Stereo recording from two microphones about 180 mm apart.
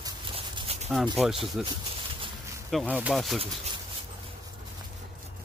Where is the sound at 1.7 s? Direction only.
25° right (ahead or behind).